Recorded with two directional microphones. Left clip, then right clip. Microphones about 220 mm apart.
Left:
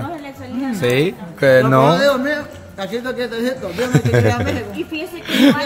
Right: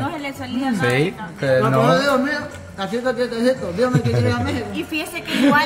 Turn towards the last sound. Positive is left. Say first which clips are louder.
# left 1 dB
turn(degrees=30)  # may be behind; listen again after turning